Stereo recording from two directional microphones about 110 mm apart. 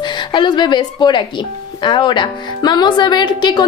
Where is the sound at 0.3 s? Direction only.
45° left (ahead or behind).